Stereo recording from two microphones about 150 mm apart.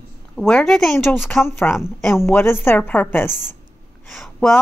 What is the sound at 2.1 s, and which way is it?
A woman's voice, 15° left (ahead or behind).